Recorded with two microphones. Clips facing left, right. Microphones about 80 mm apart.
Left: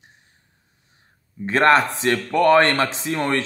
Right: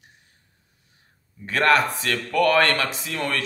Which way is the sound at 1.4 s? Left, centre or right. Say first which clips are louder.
Left 3 dB; left.